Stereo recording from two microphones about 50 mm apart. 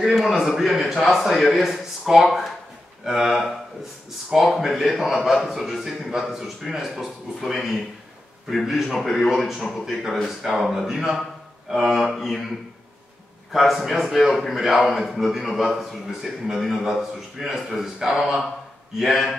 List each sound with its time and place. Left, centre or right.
0.0 s a man's voice: centre
13.5 s a man's voice: centre